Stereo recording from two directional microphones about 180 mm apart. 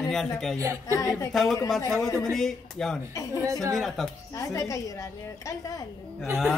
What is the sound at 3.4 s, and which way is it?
Speech, 15° right (ahead or behind).